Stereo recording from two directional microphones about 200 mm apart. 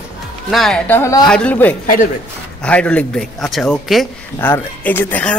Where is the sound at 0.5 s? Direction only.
Centre (ahead or behind).